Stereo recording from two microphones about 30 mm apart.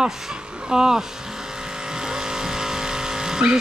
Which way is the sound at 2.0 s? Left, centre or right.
Right.